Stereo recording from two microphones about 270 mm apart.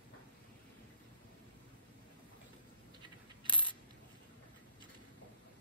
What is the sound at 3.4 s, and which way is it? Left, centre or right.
Coin, centre.